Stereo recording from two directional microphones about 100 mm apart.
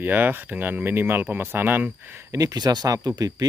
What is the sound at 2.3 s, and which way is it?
Speech, 40° right (ahead or behind).